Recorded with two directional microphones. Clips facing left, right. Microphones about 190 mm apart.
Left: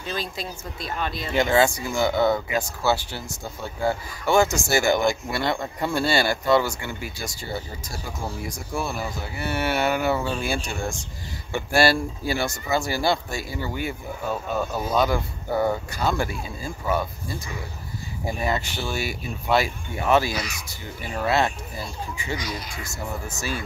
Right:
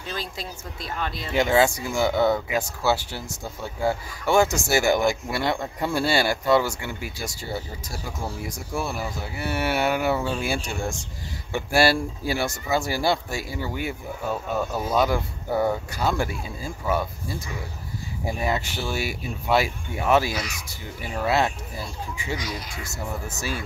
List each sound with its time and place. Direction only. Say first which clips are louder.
0.1 s speech: left 2 dB; 15° left (ahead or behind)
1.3 s speech: even; 5° right (ahead or behind)
8.5 s speech: even; 5° right (ahead or behind)
18.4 s speech: even; 5° right (ahead or behind)